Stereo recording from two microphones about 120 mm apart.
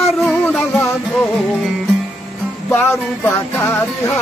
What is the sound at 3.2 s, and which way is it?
Music, 20° left (ahead or behind).